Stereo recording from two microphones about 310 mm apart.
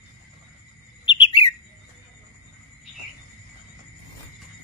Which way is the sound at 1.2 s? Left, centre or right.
Centre.